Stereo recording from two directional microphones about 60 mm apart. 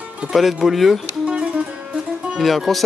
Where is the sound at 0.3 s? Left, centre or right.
Centre.